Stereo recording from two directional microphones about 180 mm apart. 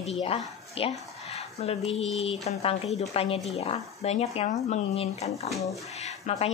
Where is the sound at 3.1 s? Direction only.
35° left (ahead or behind).